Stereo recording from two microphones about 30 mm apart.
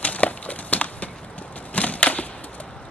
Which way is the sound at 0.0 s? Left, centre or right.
Left.